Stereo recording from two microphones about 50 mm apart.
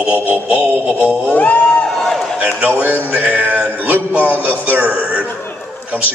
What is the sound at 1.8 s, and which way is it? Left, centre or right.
Speech, centre.